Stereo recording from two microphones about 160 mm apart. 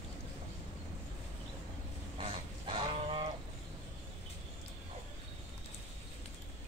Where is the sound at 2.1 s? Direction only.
35° right (ahead or behind).